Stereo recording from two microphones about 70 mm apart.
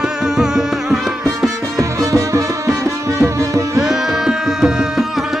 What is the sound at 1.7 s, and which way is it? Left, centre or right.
Music, right.